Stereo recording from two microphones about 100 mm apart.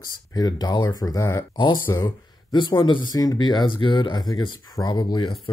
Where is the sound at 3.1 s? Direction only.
40° left (ahead or behind).